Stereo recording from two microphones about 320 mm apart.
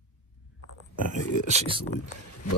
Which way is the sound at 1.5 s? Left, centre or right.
Centre.